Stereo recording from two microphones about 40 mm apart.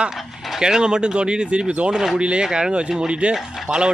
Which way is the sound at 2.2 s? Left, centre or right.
Right.